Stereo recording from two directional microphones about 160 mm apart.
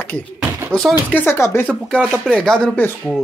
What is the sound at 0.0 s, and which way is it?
Speech, 10° left (ahead or behind).